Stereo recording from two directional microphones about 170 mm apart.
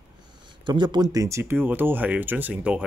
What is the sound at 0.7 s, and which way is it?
Speech, 25° right (ahead or behind).